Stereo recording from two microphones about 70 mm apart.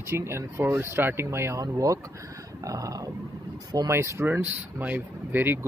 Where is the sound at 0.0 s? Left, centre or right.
Right.